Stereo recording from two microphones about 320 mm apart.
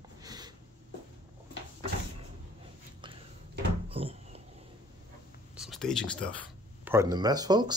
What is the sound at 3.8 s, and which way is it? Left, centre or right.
Cupboard open or close, centre.